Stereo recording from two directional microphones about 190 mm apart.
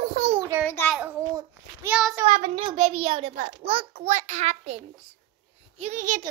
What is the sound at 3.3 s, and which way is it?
Speech, 45° right (ahead or behind).